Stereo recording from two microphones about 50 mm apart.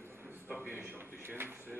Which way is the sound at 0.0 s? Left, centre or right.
Right.